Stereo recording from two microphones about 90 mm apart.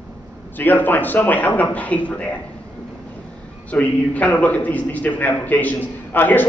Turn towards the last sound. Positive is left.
turn(degrees=20)  # may be behind; listen again after turning